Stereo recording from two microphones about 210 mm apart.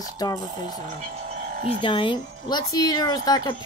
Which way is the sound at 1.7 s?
25° left (ahead or behind).